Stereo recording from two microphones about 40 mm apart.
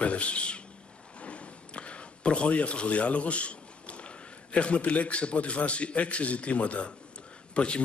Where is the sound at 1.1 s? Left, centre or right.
Left.